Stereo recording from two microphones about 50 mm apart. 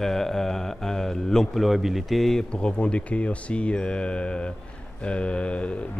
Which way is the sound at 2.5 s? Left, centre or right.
Left.